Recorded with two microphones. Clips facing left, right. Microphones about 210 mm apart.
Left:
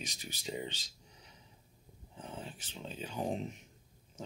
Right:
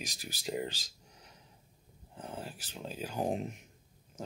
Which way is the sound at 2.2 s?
5° right (ahead or behind).